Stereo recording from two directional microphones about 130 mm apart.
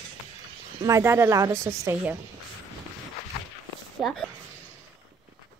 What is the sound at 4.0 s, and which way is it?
Speech, 5° right (ahead or behind).